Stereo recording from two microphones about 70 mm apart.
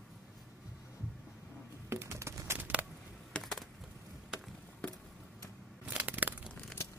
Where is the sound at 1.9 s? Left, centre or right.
Right.